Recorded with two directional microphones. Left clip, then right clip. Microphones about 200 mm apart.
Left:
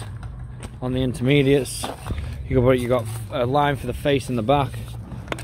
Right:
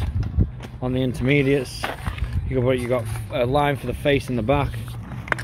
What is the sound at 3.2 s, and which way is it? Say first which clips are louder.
Speech: right 1 dB; 5° left (ahead or behind).